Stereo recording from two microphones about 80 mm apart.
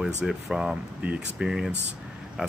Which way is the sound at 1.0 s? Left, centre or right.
Centre.